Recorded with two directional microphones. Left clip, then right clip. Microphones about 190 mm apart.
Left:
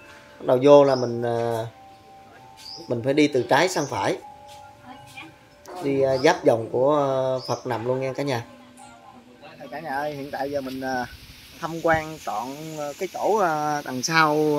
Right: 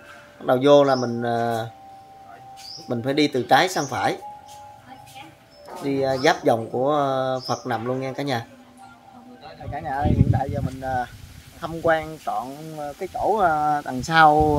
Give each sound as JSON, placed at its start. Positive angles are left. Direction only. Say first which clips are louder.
{"t": 0.5, "sound": "speech", "louder": "left 1 dB", "side_deg": 0}
{"t": 2.9, "sound": "speech", "louder": "left 1 dB", "side_deg": 0}
{"t": 5.9, "sound": "speech", "louder": "left 1 dB", "side_deg": 0}
{"t": 9.7, "sound": "speech", "louder": "right 3 dB", "side_deg": 5}
{"t": 14.2, "sound": "speech", "louder": "right 7 dB", "side_deg": -30}